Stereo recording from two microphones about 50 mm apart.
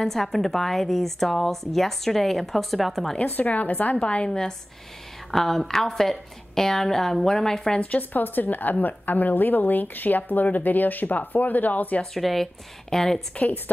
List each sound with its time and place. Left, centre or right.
0.0 s speech: centre
3.2 s speech: left
4.0 s a woman's voice: left
4.3 s a woman's voice: centre
7.8 s speech: left
12.2 s a woman's voice: centre